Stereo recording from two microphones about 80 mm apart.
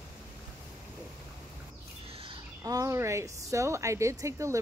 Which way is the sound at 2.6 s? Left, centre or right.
Right.